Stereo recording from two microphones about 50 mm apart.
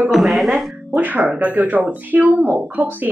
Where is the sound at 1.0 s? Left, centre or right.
Right.